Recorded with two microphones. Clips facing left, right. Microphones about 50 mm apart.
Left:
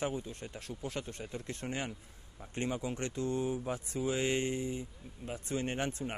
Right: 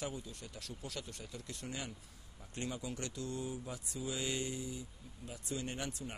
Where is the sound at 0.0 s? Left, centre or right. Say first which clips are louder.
Left 7 dB; left.